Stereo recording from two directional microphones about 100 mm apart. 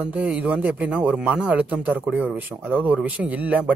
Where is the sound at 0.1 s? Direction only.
15° right (ahead or behind).